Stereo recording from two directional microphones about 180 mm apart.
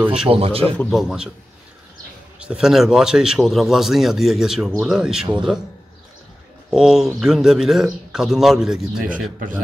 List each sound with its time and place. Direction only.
0.0 s speech: 5° right (ahead or behind)
0.3 s speech: 30° right (ahead or behind)
0.7 s speech: centre (ahead or behind)
2.3 s speech: 5° right (ahead or behind)
6.7 s speech: 5° right (ahead or behind)